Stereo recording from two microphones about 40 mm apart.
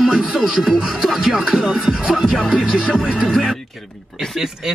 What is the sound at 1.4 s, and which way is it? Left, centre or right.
Speech, centre.